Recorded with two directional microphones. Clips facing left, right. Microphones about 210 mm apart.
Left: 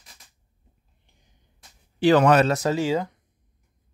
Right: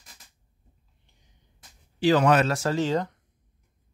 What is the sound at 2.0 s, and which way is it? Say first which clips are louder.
Speech: left 3 dB; 60° left (ahead or behind).